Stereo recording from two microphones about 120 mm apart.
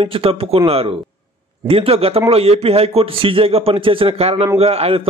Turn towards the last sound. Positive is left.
turn(degrees=-55)  # may be behind; listen again after turning